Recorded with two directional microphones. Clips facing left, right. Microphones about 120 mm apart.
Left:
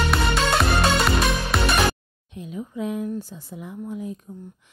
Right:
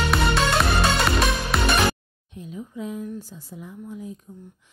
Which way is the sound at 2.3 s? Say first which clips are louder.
Left 3 dB; 75° left (ahead or behind).